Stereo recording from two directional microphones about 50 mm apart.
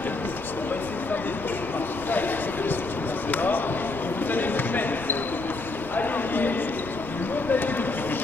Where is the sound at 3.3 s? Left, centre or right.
Left.